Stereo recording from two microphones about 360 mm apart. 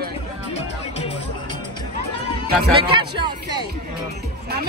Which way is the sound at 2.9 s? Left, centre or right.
Centre.